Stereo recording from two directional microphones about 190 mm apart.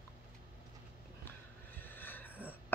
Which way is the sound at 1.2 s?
10° left (ahead or behind).